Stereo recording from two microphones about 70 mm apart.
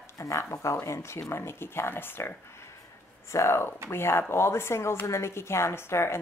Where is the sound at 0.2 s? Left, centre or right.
Left.